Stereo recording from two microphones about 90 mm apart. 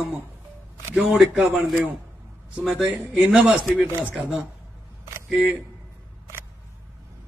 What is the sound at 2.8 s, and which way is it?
Speech, 10° right (ahead or behind).